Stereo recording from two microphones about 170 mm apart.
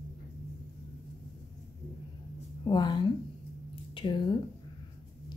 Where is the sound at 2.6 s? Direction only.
25° left (ahead or behind).